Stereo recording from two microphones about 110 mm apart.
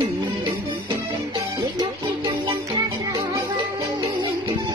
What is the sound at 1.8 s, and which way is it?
Music, 35° right (ahead or behind).